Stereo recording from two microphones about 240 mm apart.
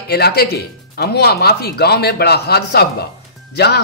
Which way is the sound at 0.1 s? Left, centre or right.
Left.